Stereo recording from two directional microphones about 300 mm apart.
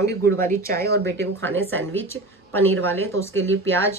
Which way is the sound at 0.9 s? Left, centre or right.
Right.